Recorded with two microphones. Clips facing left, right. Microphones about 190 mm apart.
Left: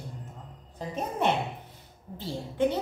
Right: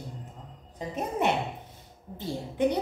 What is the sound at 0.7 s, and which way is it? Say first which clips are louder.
A woman's voice: right 1 dB; 10° right (ahead or behind).